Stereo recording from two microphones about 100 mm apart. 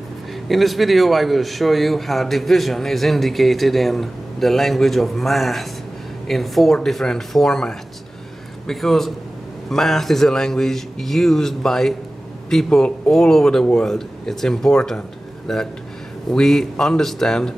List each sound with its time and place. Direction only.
0.5 s a man's voice: centre (ahead or behind)